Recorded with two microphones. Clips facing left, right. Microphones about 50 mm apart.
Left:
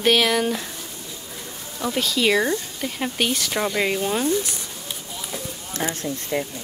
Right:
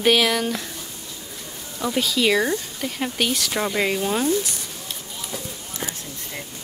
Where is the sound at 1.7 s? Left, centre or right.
Centre.